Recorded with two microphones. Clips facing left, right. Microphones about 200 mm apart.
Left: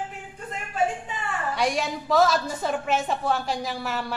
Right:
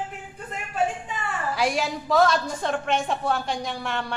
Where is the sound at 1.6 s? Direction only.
Centre (ahead or behind).